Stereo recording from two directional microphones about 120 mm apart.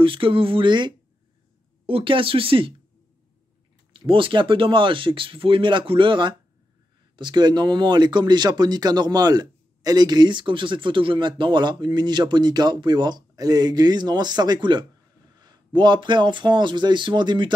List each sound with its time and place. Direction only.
0.0 s speech: 45° right (ahead or behind)
3.9 s speech: 45° right (ahead or behind)